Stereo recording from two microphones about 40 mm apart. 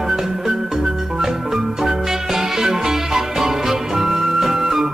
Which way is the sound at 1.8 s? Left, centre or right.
Centre.